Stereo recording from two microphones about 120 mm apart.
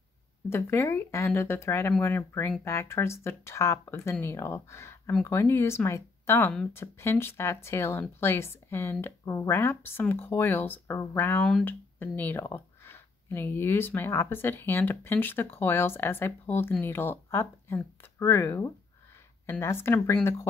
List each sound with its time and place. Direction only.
0.5 s speech: 20° left (ahead or behind)